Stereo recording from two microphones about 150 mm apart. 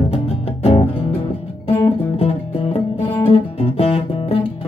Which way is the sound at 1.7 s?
40° left (ahead or behind).